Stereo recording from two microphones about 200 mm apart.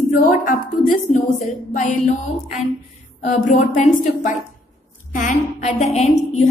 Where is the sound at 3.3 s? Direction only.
35° left (ahead or behind).